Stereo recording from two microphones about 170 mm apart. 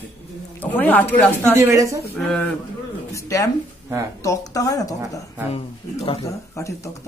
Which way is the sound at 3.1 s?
20° left (ahead or behind).